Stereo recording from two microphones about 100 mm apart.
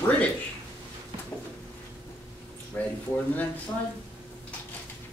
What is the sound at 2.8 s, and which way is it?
Speech, 15° left (ahead or behind).